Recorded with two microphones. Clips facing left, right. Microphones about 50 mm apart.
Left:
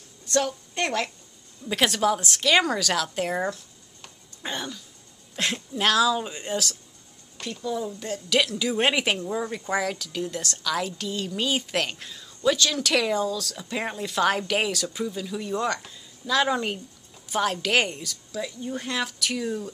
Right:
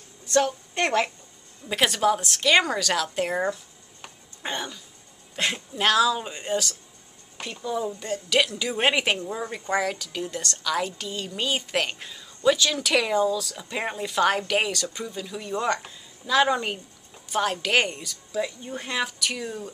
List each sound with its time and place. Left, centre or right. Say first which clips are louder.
0.3 s a woman's voice: right 2 dB; centre
1.7 s speech: right 1 dB; centre
7.3 s speech: even; centre
8.0 s speech: even; centre